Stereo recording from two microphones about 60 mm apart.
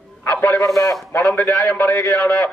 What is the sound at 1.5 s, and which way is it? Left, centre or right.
Speech, left.